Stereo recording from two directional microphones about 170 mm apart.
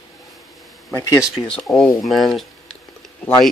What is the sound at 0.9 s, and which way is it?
Speech, 20° left (ahead or behind).